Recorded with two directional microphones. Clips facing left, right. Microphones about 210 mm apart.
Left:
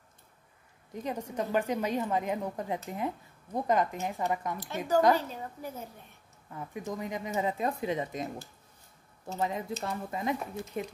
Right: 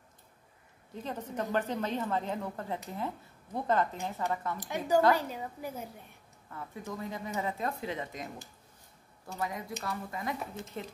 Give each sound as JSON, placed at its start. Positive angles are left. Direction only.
{"t": 0.9, "sound": "a woman's voice", "side_deg": 15}
{"t": 4.6, "sound": "a woman's voice", "side_deg": -15}
{"t": 6.5, "sound": "a woman's voice", "side_deg": 15}
{"t": 9.3, "sound": "a woman's voice", "side_deg": 25}